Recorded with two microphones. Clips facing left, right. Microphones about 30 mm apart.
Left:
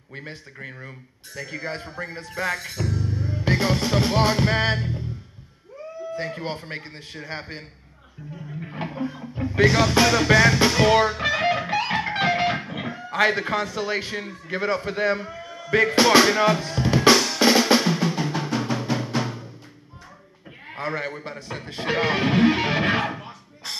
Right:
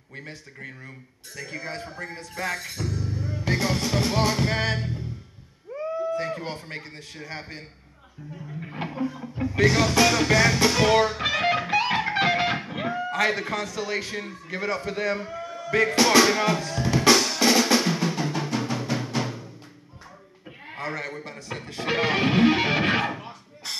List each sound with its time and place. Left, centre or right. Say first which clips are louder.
0.1 s a man's voice: left 3 dB; left
1.3 s a man's voice: left 2 dB; centre
1.6 s a man's voice: left 3 dB; centre
4.7 s music: left 2 dB; centre
6.4 s a man's voice: left 3 dB; left
8.6 s a sound: left 1 dB; centre
9.0 s music: right 2 dB; left; by 13.0 s centre
13.1 s a man's voice: left 6 dB; left
15.1 s a sound: right 1 dB; centre
15.7 s a man's voice: left 3 dB; left
16.3 s drum: left 3 dB; centre
17.8 s drum: left 2 dB; centre
20.7 s a man's voice: left 3 dB; left
21.8 s music: left 1 dB; centre